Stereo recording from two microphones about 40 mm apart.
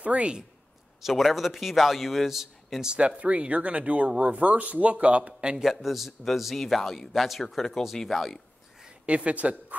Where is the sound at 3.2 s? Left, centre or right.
Right.